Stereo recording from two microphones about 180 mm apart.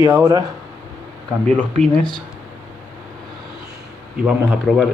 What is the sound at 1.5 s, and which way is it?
Speech, 5° left (ahead or behind).